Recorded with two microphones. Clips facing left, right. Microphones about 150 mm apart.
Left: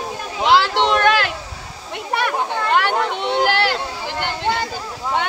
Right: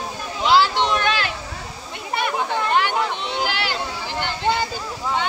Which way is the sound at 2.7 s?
60° left (ahead or behind).